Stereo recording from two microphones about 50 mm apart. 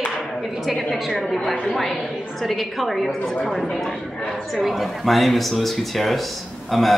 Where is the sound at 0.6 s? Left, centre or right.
Centre.